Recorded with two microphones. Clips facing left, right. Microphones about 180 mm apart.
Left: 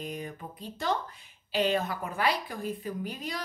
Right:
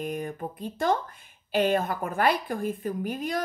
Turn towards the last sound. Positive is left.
turn(degrees=-50)  # may be behind; listen again after turning